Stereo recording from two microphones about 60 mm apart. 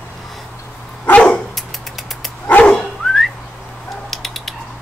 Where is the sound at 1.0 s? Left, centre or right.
Centre.